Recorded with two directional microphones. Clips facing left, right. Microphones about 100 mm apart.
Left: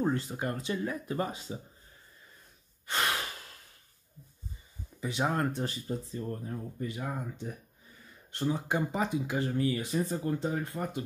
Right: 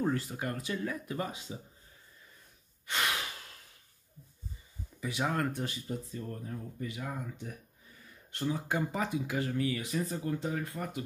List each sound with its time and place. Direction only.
0.0 s speech: 25° left (ahead or behind)
2.9 s speech: 35° left (ahead or behind)
5.0 s speech: 25° left (ahead or behind)